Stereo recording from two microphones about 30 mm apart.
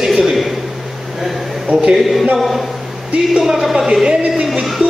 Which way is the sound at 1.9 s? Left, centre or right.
Centre.